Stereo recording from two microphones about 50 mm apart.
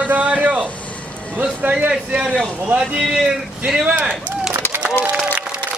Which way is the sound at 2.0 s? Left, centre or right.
Right.